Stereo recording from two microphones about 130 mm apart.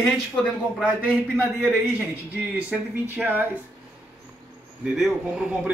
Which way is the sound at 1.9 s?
15° right (ahead or behind).